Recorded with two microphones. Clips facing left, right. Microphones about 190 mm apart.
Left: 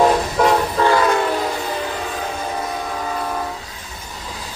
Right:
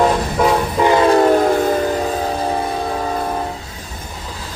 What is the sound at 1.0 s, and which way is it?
Train, 35° right (ahead or behind).